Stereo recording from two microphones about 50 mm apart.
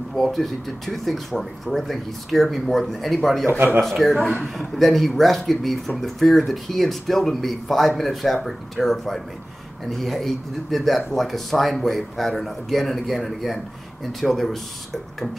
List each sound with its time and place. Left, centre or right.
0.1 s speech: centre
3.4 s a man's voice: right
4.6 s speech: centre